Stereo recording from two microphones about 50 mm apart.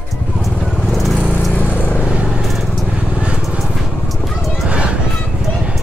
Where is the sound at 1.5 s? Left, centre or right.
Left.